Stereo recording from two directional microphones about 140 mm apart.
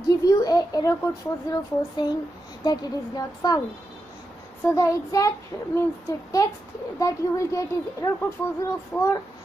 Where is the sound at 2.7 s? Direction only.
30° left (ahead or behind).